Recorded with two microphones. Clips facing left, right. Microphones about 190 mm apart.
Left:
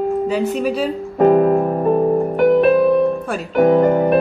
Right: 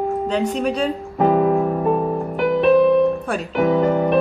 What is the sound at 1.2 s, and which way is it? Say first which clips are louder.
Music: left 4 dB; 50° left (ahead or behind).